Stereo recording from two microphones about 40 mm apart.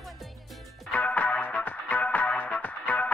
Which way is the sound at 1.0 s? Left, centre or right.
Left.